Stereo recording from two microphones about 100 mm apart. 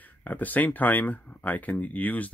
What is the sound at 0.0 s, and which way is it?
Speech, 15° left (ahead or behind).